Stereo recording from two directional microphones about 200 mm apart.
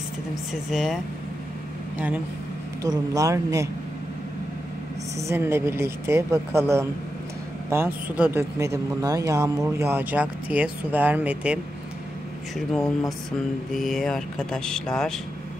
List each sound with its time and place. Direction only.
0.5 s speech: centre (ahead or behind)
5.2 s speech: 10° right (ahead or behind); by 15.1 s 5° left (ahead or behind)